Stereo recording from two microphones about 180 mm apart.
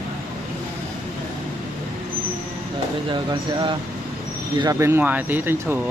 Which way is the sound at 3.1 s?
25° right (ahead or behind).